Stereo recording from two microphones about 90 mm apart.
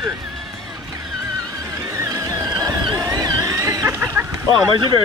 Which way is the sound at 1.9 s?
35° right (ahead or behind).